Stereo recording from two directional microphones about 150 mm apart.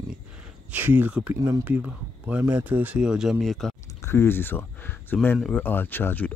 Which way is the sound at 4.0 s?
15° left (ahead or behind).